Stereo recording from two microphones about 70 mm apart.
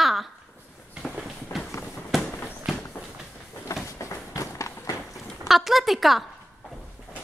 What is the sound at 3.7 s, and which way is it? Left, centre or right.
Run, left.